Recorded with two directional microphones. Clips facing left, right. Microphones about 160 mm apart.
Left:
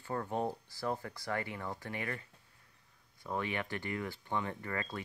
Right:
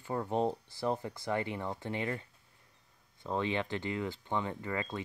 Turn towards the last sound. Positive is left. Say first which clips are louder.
# right 3 dB
turn(degrees=-20)  # may be behind; listen again after turning